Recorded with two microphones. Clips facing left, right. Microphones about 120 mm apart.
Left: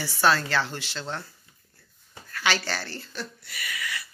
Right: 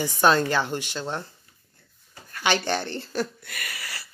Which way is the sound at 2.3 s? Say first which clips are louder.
Right 4 dB; 20° right (ahead or behind).